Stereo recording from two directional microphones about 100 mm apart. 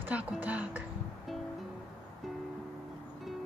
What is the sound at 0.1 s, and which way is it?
Music, 15° right (ahead or behind).